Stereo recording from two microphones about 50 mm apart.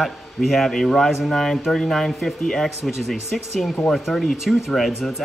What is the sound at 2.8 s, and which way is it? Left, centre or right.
Speech, centre.